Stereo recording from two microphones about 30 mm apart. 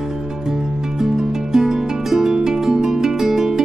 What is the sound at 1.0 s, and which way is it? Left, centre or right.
Music, centre.